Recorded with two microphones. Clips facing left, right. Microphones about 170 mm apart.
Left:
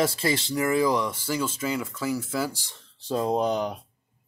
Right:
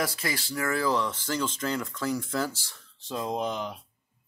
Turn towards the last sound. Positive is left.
turn(degrees=40)  # may be behind; listen again after turning